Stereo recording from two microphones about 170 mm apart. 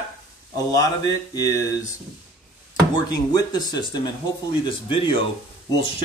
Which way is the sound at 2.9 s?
25° left (ahead or behind).